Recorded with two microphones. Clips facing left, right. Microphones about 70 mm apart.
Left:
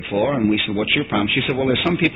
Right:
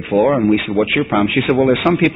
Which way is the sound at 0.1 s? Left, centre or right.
Centre.